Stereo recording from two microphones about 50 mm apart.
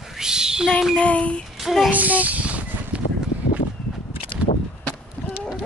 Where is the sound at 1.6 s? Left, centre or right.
Centre.